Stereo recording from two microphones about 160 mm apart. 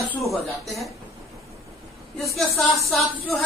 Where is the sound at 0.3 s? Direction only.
Centre (ahead or behind).